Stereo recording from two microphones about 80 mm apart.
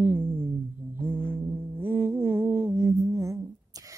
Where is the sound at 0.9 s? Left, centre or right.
Right.